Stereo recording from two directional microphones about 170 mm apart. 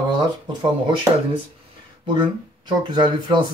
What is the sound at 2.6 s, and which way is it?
Speech, 25° right (ahead or behind).